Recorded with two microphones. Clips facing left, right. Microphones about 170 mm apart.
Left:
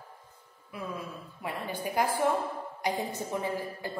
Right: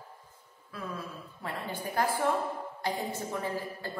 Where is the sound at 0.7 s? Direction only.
15° left (ahead or behind).